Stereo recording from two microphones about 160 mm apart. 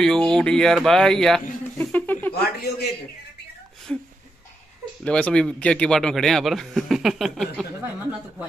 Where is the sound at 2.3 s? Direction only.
80° left.